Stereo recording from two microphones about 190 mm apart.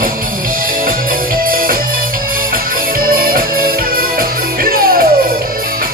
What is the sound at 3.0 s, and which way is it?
Music, 50° right (ahead or behind).